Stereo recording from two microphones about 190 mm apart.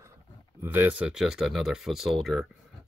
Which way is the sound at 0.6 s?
10° right (ahead or behind).